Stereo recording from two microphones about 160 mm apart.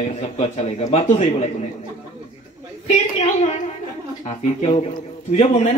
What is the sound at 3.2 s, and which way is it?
A woman's voice, 45° left (ahead or behind).